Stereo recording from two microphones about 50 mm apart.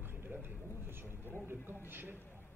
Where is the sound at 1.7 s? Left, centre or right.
Right.